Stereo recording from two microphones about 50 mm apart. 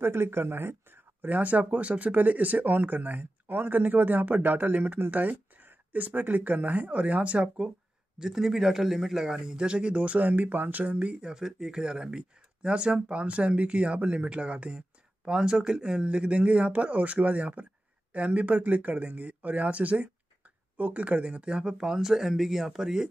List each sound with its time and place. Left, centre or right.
0.0 s speech: right; by 7.7 s centre
8.2 s a man's voice: centre